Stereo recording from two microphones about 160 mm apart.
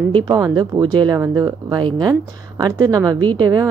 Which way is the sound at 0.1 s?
30° right (ahead or behind).